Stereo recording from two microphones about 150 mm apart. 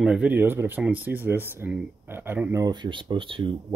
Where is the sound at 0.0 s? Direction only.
5° right (ahead or behind).